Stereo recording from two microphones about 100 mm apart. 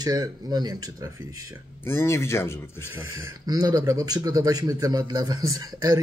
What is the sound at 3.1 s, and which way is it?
Speech, 40° right (ahead or behind).